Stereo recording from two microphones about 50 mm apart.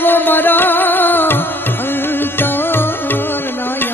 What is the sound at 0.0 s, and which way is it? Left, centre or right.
Music, left.